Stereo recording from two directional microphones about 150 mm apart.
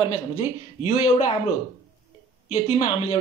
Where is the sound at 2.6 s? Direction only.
40° left (ahead or behind).